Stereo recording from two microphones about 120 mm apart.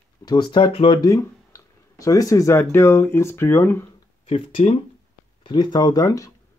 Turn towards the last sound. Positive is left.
turn(degrees=30)  # may be behind; listen again after turning